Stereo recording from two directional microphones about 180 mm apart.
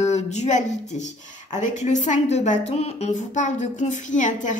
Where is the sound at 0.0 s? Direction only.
40° left (ahead or behind).